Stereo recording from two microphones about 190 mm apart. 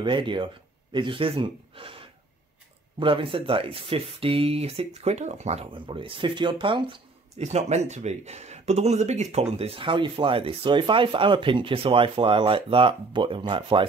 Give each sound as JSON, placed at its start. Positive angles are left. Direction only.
{"t": 0.0, "sound": "speech", "side_deg": -25}